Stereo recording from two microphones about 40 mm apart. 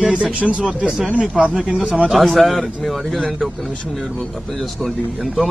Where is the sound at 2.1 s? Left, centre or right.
Centre.